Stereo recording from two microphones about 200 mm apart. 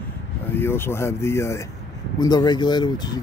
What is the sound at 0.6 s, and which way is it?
Speech, 10° left (ahead or behind).